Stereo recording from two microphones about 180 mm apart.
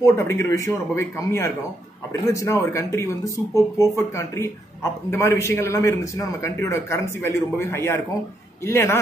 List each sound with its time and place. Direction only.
0.0 s a man's voice: 15° left (ahead or behind)